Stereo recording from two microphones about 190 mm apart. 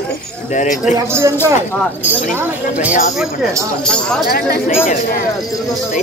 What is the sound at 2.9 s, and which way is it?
Speech, 40° left (ahead or behind).